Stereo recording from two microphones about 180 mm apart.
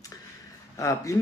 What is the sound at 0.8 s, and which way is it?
Speech, 15° left (ahead or behind).